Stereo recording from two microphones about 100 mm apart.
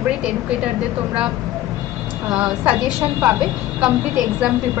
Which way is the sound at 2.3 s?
5° right (ahead or behind).